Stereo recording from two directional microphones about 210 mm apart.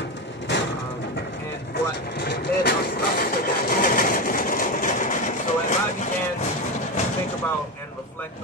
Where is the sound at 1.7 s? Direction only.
50° left (ahead or behind).